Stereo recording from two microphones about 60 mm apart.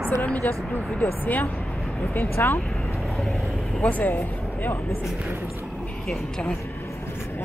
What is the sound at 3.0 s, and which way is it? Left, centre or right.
Vehicle, centre.